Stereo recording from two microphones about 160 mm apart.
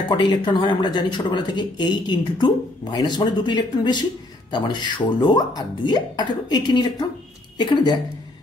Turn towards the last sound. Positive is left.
turn(degrees=25)  # may be behind; listen again after turning